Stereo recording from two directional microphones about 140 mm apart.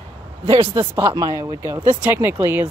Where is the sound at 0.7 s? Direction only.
20° right (ahead or behind).